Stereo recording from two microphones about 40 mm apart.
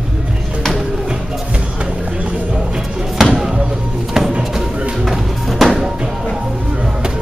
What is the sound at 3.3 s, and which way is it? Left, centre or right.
Music, centre.